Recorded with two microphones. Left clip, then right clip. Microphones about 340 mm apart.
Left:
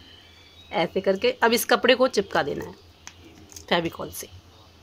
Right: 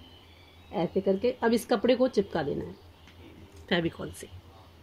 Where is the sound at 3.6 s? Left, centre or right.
Centre.